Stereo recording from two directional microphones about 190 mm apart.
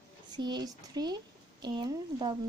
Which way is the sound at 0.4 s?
20° right (ahead or behind).